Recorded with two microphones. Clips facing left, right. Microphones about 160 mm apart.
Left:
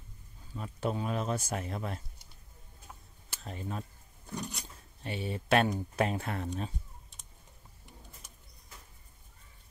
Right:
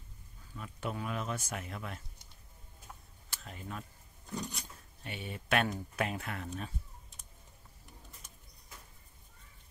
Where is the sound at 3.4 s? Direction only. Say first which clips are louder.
Left 5 dB; 30° left (ahead or behind).